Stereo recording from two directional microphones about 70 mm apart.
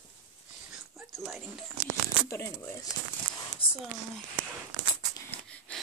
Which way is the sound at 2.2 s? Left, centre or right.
Left.